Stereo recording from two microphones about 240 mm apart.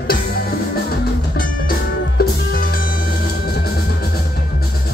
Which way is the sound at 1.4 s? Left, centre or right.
Left.